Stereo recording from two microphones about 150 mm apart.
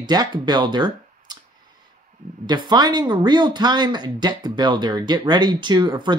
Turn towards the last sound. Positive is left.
turn(degrees=-30)  # may be behind; listen again after turning